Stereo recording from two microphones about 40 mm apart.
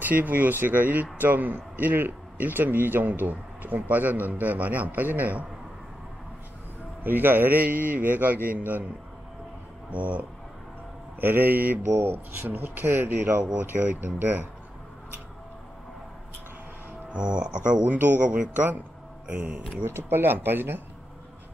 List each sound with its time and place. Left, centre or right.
0.0 s a man's voice: right
7.0 s a man's voice: right
7.6 s a man's voice: right
9.8 s speech: right
11.1 s a man's voice: right
11.9 s speech: right
13.4 s a man's voice: right
17.1 s speech: right
17.9 s a man's voice: right
19.8 s speech: right